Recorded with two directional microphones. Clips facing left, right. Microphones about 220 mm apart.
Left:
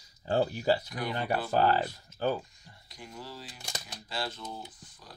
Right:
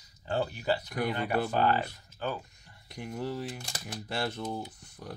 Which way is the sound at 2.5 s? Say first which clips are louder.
Right 2 dB; 60° right (ahead or behind).